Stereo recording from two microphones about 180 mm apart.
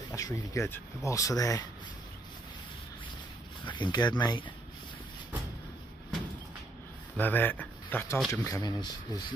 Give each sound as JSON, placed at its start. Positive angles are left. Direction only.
{"t": 0.1, "sound": "speech", "side_deg": 20}
{"t": 3.6, "sound": "speech", "side_deg": 25}
{"t": 7.2, "sound": "speech", "side_deg": 10}